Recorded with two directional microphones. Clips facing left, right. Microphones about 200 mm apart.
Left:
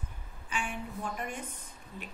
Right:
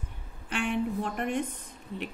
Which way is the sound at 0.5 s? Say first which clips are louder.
Right 9 dB; 65° right (ahead or behind).